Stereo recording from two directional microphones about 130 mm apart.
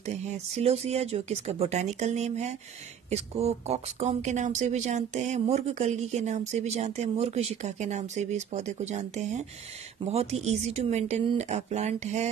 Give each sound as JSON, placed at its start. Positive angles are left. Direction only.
{"t": 0.0, "sound": "speech", "side_deg": -60}